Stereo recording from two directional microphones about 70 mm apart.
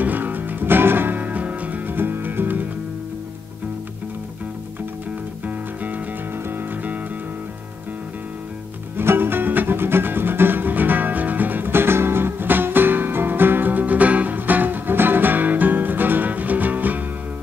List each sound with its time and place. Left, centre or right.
0.0 s music: right
8.9 s music: right